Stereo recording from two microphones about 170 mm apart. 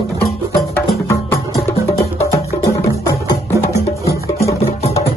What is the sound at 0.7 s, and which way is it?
Music, 15° left (ahead or behind).